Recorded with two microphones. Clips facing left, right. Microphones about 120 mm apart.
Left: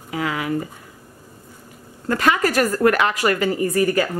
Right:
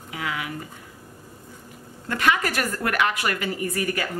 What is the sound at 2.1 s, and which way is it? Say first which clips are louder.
A woman's voice: left 5 dB; 35° left (ahead or behind).